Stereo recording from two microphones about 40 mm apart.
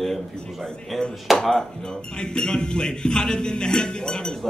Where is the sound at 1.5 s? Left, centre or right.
Centre.